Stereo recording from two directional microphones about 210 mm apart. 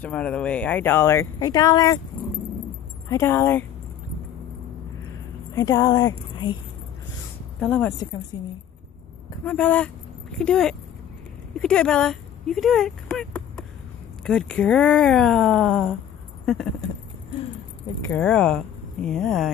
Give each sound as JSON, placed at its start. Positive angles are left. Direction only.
{"t": 0.0, "sound": "speech", "side_deg": 5}
{"t": 3.1, "sound": "speech", "side_deg": 10}
{"t": 5.5, "sound": "speech", "side_deg": 15}
{"t": 7.6, "sound": "speech", "side_deg": 5}
{"t": 8.3, "sound": "speech", "side_deg": 20}
{"t": 9.4, "sound": "speech", "side_deg": 5}
{"t": 18.0, "sound": "speech", "side_deg": 10}